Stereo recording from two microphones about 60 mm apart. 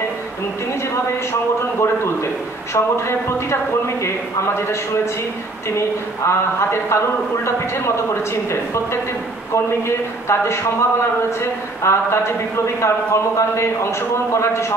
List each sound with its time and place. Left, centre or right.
2.7 s speech: left